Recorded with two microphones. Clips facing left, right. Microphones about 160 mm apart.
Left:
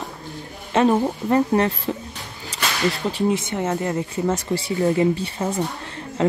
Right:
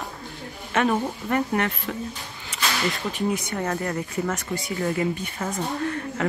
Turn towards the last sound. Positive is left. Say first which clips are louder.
# right 4 dB
turn(degrees=30)  # may be behind; listen again after turning